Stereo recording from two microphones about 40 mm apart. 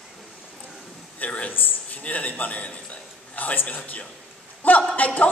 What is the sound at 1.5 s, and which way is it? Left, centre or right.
Speech, left.